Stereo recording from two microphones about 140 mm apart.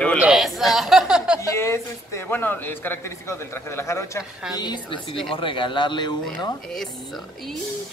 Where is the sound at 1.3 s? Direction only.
20° left (ahead or behind).